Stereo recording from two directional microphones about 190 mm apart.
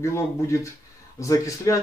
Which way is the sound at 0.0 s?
15° left (ahead or behind).